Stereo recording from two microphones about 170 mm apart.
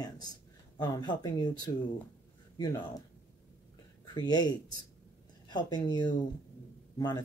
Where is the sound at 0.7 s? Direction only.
25° left (ahead or behind).